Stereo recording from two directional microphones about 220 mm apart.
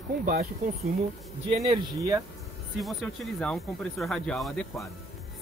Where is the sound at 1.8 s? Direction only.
20° right (ahead or behind).